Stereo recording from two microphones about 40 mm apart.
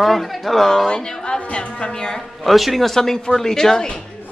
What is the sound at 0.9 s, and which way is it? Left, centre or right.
A woman's voice, left.